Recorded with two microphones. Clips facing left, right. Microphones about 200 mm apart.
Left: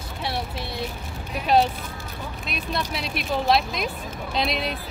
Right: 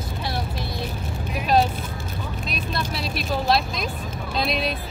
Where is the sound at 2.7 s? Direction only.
15° left (ahead or behind).